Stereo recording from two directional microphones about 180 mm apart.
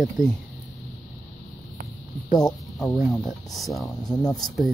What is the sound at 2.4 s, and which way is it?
Speech, centre (ahead or behind).